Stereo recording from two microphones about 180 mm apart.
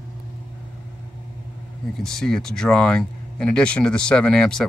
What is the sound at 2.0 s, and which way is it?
Speech, 5° left (ahead or behind).